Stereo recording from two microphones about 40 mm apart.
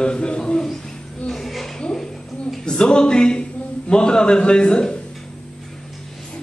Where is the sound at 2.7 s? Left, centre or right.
Left.